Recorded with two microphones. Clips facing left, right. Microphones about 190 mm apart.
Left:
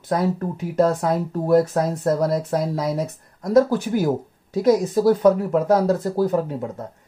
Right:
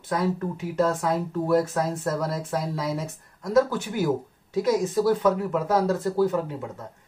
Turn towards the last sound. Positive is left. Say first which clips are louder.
# left 5 dB
turn(degrees=40)  # may be behind; listen again after turning